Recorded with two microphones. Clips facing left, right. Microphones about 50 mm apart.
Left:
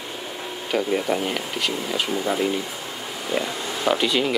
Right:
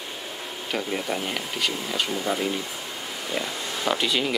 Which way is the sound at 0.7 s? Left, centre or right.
Centre.